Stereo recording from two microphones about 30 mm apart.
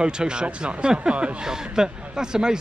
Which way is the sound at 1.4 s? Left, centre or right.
Right.